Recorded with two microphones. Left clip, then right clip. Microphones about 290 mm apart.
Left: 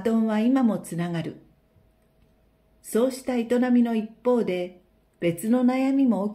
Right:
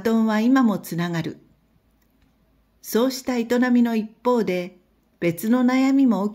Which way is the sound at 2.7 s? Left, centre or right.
Right.